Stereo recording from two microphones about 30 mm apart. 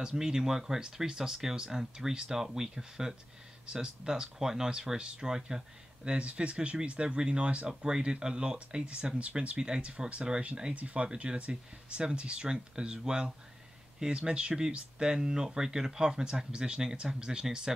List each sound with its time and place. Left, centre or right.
0.0 s speech: right
6.0 s speech: right
8.0 s speech: right
9.6 s speech: right
9.8 s speech: right
10.7 s speech: right